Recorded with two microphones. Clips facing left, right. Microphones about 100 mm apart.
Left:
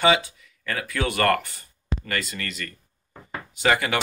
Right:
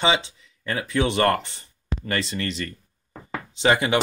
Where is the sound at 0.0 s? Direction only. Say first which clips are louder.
Left 2 dB; 25° right (ahead or behind).